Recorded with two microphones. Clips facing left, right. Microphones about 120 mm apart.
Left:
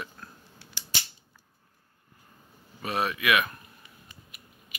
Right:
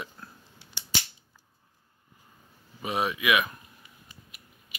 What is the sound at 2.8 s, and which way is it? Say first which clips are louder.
Speech: even; 15° right (ahead or behind).